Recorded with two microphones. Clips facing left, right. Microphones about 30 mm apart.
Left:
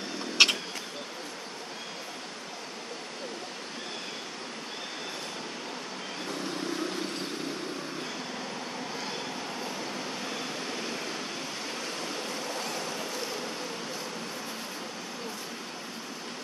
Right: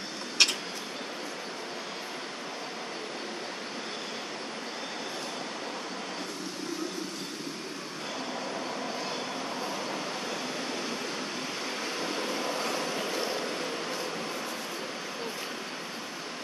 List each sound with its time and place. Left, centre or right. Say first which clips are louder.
0.4 s vehicle: left 3 dB; centre
9.7 s a sound: right 2 dB; centre
11.8 s vehicle: right 3 dB; centre